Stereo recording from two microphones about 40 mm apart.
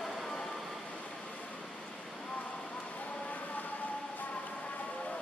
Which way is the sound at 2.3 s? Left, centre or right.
Left.